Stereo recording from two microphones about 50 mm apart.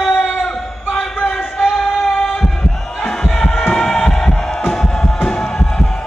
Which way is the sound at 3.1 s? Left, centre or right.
Centre.